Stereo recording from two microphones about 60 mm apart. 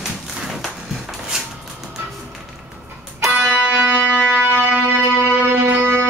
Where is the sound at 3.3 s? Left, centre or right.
Right.